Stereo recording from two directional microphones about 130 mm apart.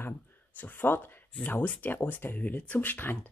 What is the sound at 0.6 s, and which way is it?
Speech, 15° left (ahead or behind).